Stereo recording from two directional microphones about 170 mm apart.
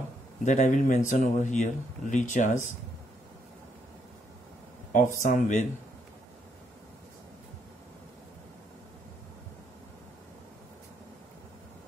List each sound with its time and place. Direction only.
0.5 s speech: 45° left (ahead or behind)
4.9 s speech: 50° left (ahead or behind)